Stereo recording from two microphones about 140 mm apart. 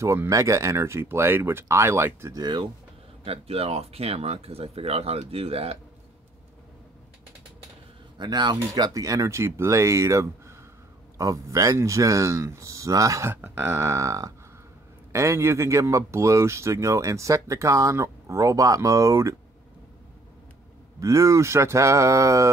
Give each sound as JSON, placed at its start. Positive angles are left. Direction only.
{"t": 0.0, "sound": "speech", "side_deg": -20}
{"t": 2.4, "sound": "speech", "side_deg": -30}
{"t": 3.3, "sound": "speech", "side_deg": -45}
{"t": 8.2, "sound": "speech", "side_deg": -30}
{"t": 21.0, "sound": "speech", "side_deg": -20}